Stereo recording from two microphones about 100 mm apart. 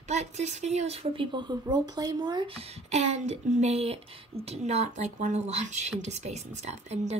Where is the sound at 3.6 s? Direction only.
90° right.